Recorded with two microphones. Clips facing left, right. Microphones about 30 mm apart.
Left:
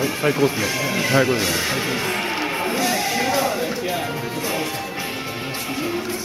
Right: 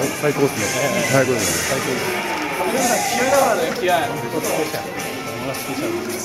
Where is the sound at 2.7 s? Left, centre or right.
Left.